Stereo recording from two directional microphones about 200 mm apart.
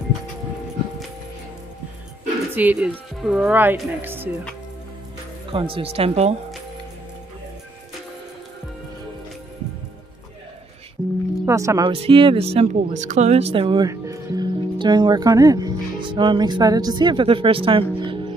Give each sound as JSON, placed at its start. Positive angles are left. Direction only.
{"t": 2.5, "sound": "speech", "side_deg": -10}
{"t": 5.5, "sound": "speech", "side_deg": -25}
{"t": 11.4, "sound": "speech", "side_deg": -15}
{"t": 11.9, "sound": "speech", "side_deg": -25}